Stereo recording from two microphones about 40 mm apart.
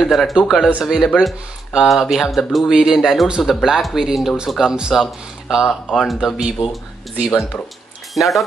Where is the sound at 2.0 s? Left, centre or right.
Centre.